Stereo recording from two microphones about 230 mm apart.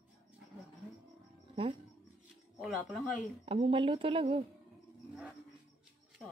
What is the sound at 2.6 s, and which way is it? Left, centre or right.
Speech, centre.